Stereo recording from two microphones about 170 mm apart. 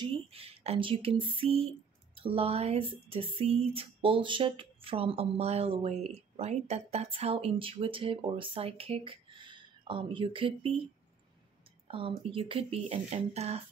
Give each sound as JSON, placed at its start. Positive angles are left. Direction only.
{"t": 0.0, "sound": "speech", "side_deg": -35}
{"t": 11.9, "sound": "speech", "side_deg": -30}